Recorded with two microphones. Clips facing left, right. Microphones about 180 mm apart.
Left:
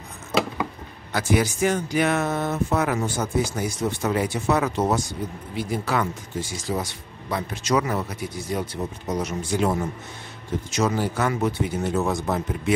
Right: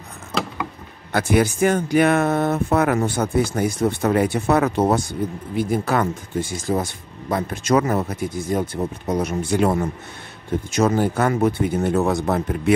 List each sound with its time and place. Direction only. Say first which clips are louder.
1.1 s speech: right 4 dB; 55° right (ahead or behind)